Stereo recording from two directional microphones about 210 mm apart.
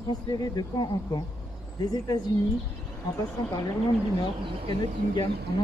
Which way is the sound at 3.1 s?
15° left (ahead or behind).